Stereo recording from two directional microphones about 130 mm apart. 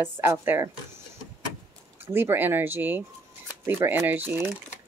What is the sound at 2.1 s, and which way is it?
Speech, 15° right (ahead or behind).